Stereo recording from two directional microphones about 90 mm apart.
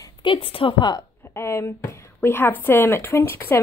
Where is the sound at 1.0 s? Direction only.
30° left (ahead or behind).